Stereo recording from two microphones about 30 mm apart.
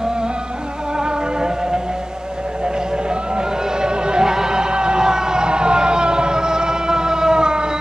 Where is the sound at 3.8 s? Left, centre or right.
Right.